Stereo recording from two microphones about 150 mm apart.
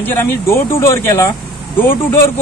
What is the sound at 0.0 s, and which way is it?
Speech, 15° left (ahead or behind).